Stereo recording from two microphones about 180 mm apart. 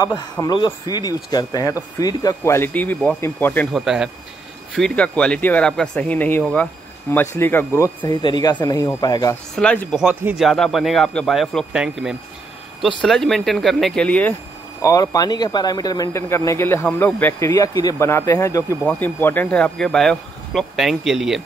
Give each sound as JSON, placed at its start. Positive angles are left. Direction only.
{"t": 0.0, "sound": "speech", "side_deg": 20}
{"t": 3.7, "sound": "a man's voice", "side_deg": -5}
{"t": 9.6, "sound": "a man's voice", "side_deg": 5}
{"t": 10.0, "sound": "a man's voice", "side_deg": -5}
{"t": 14.8, "sound": "speech", "side_deg": 20}